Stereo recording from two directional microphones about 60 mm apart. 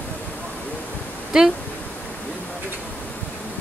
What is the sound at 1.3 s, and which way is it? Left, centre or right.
Speech, centre.